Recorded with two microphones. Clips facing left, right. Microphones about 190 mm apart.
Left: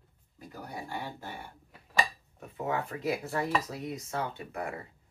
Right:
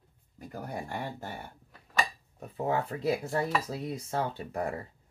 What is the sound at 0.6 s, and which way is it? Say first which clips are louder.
Speech: right 2 dB; 50° right (ahead or behind).